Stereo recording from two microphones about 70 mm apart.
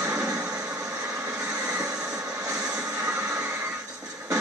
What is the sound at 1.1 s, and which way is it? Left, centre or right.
Vehicle, right.